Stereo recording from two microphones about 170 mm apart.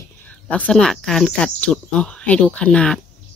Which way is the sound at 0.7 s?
5° left (ahead or behind).